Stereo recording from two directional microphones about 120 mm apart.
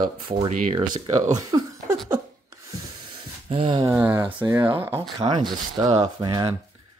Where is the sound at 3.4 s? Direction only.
45° right (ahead or behind).